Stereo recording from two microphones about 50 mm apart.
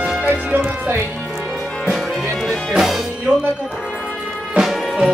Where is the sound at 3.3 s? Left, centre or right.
Right.